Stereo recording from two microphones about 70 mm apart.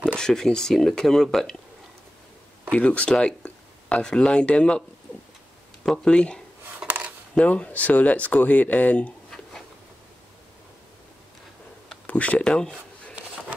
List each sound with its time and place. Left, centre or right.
0.1 s speech: centre
2.7 s speech: centre
5.9 s speech: centre
6.8 s a sound: centre
7.3 s speech: centre
12.1 s speech: centre